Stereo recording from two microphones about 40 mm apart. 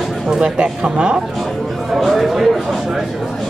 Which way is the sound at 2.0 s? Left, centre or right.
Centre.